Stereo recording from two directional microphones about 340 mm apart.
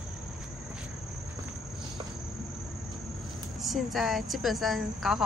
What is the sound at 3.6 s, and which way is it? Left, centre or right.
A woman's voice, centre.